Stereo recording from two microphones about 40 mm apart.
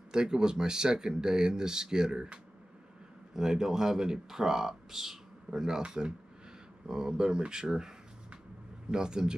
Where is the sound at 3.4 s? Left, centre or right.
Centre.